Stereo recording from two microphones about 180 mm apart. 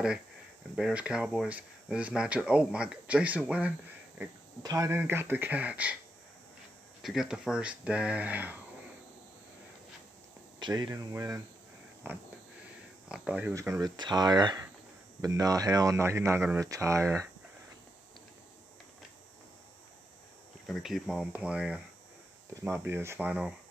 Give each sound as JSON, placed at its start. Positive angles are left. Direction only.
{"t": 0.7, "sound": "speech", "side_deg": -5}
{"t": 7.0, "sound": "speech", "side_deg": 0}
{"t": 10.6, "sound": "speech", "side_deg": -25}
{"t": 13.1, "sound": "speech", "side_deg": -5}
{"t": 13.5, "sound": "speech", "side_deg": -15}
{"t": 20.6, "sound": "speech", "side_deg": 0}